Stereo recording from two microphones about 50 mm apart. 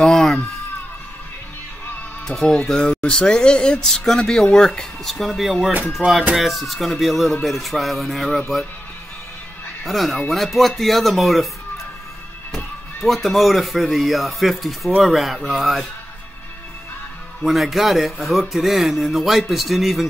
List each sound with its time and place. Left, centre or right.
0.0 s a sound: centre
2.2 s speech: centre
2.7 s speech: centre
6.0 s speech: right
6.3 s speech: centre
9.8 s speech: centre
12.5 s speech: centre
17.4 s speech: centre